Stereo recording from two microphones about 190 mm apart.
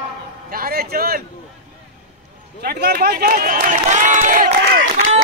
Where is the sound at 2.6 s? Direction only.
55° right (ahead or behind).